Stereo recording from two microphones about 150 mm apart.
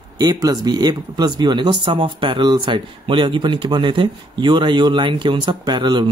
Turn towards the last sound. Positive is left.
turn(degrees=-30)  # may be behind; listen again after turning